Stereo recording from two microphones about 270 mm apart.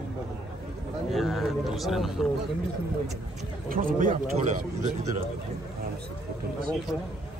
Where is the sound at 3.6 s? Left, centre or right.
Right.